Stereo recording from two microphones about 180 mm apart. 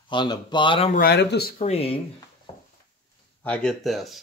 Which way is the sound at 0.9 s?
60° left (ahead or behind).